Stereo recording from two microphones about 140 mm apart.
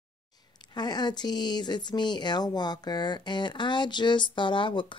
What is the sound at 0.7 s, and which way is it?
Speech, 30° left (ahead or behind).